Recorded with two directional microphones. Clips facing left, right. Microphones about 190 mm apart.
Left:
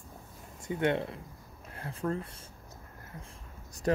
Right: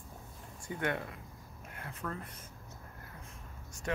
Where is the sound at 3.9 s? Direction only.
40° left (ahead or behind).